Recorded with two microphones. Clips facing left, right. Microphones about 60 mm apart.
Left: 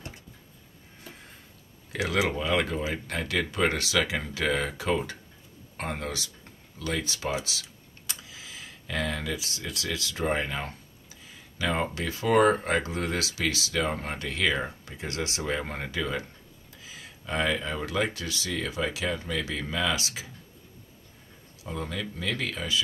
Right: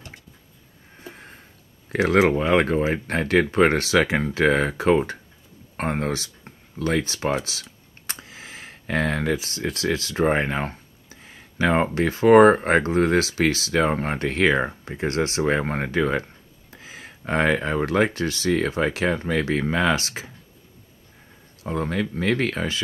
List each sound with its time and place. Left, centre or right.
1.9 s speech: right
21.6 s speech: right